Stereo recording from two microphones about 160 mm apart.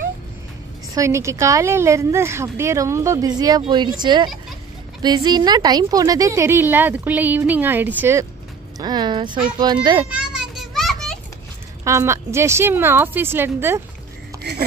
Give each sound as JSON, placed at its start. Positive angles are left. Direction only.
{"t": 0.9, "sound": "a woman's voice", "side_deg": -20}
{"t": 8.7, "sound": "a woman's voice", "side_deg": -25}
{"t": 10.1, "sound": "children playing", "side_deg": -5}
{"t": 11.8, "sound": "a woman's voice", "side_deg": -20}